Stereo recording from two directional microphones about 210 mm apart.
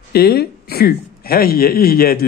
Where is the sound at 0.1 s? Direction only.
45° left (ahead or behind).